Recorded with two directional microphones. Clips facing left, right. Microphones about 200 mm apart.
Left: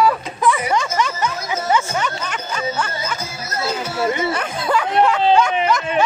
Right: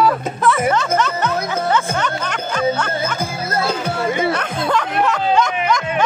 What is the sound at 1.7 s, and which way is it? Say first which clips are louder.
Music: left 2 dB; 10° left (ahead or behind).